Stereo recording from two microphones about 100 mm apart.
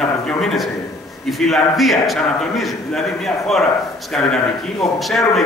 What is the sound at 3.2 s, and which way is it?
A man's voice, 5° left (ahead or behind).